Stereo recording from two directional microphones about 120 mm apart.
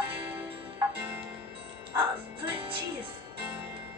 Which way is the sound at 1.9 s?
45° right (ahead or behind).